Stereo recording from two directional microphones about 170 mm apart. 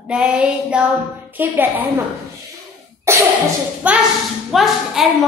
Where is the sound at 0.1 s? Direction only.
5° right (ahead or behind).